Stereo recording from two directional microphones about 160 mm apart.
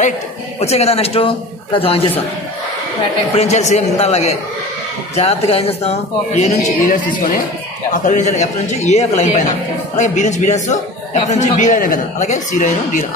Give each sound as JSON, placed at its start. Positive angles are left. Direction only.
{"t": 0.6, "sound": "speech", "side_deg": 40}
{"t": 3.3, "sound": "a man's voice", "side_deg": 45}